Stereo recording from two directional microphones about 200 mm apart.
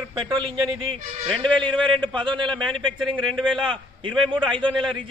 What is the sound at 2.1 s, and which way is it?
Speech, 25° right (ahead or behind).